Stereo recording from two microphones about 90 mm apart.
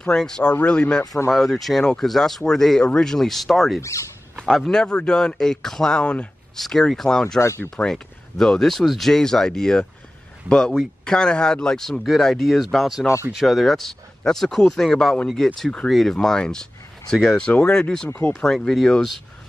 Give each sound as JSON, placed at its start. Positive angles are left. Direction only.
{"t": 0.0, "sound": "speech", "side_deg": 10}
{"t": 7.3, "sound": "speech", "side_deg": 30}
{"t": 7.7, "sound": "speech", "side_deg": 5}